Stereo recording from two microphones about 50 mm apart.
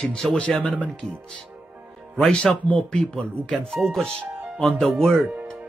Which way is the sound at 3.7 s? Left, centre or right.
Centre.